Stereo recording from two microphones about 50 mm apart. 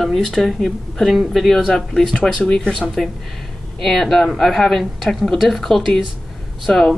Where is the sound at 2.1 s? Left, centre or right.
Centre.